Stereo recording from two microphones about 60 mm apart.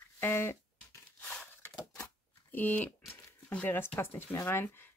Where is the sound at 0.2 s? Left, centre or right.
Left.